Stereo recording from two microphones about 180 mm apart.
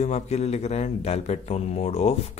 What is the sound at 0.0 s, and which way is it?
Speech, 40° left (ahead or behind).